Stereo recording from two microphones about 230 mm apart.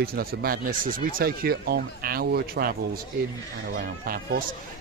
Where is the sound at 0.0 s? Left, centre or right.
Right.